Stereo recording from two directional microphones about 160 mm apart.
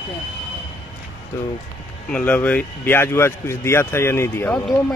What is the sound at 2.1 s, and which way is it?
Speech, 10° left (ahead or behind).